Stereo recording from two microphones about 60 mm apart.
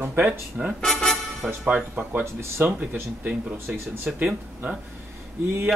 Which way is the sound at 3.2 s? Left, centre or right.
Right.